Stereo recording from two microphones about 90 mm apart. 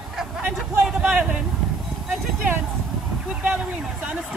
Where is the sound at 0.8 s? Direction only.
5° right (ahead or behind).